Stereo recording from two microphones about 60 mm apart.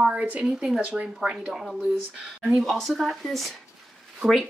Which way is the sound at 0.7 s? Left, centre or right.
Centre.